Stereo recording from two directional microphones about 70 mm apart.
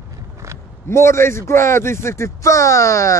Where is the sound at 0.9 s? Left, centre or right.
Left.